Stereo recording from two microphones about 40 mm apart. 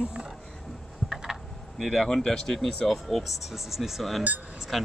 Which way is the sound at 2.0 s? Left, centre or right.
Centre.